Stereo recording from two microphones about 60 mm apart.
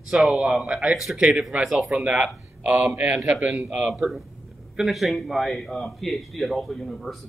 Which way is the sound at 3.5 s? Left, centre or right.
Centre.